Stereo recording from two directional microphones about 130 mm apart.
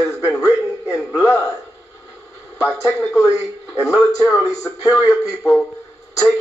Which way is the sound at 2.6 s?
25° left (ahead or behind).